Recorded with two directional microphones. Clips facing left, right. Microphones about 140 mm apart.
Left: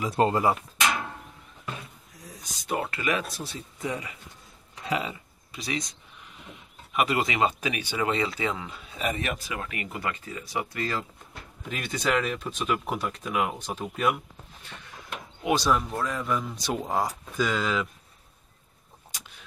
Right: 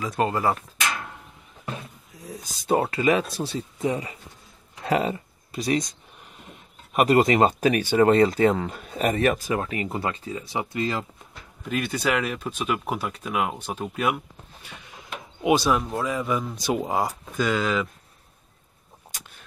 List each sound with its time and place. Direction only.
0.0 s speech: 25° left (ahead or behind)
2.6 s speech: 30° right (ahead or behind)
4.8 s speech: 45° right (ahead or behind); by 11.1 s 20° right (ahead or behind)
11.7 s speech: 5° right (ahead or behind)
15.4 s speech: 10° right (ahead or behind)